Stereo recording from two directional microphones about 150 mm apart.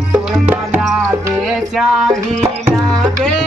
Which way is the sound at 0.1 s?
10° right (ahead or behind).